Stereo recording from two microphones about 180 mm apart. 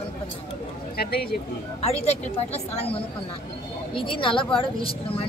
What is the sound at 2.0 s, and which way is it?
Speech, 35° left (ahead or behind).